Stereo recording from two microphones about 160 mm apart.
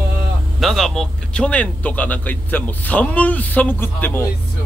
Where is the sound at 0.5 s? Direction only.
Centre (ahead or behind).